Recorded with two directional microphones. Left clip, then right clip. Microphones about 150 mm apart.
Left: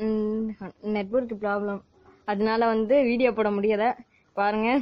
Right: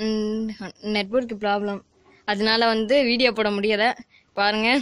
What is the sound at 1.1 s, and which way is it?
Speech, 30° right (ahead or behind).